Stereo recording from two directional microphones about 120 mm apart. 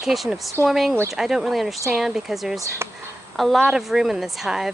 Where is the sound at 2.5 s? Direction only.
25° right (ahead or behind).